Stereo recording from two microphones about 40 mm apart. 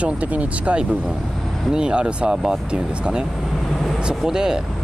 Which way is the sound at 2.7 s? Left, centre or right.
Right.